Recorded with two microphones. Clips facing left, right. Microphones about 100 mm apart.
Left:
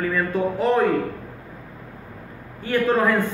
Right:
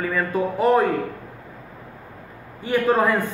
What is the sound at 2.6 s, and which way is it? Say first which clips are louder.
Speech: right 1 dB; 15° right (ahead or behind).